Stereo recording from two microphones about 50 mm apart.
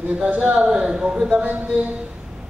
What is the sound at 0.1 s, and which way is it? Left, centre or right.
Speech, right.